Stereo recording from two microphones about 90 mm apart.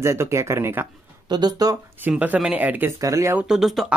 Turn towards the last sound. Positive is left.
turn(degrees=0)  # may be behind; listen again after turning